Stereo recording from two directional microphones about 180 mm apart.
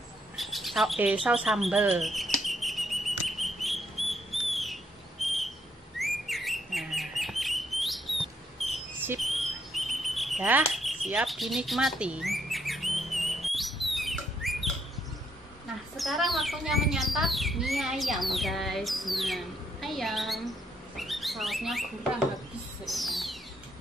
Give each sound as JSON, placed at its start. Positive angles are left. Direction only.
{"t": 0.4, "sound": "bird", "side_deg": 0}
{"t": 5.2, "sound": "a sound", "side_deg": 0}
{"t": 5.9, "sound": "bird", "side_deg": 0}
{"t": 9.2, "sound": "bird", "side_deg": 0}
{"t": 16.0, "sound": "speech", "side_deg": 0}
{"t": 20.9, "sound": "bird", "side_deg": 0}
{"t": 22.8, "sound": "music", "side_deg": 0}